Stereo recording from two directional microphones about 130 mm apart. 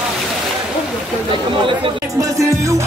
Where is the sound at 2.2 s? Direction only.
25° right (ahead or behind).